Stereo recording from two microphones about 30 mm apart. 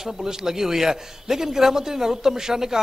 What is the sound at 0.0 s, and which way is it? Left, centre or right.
A man's voice, centre.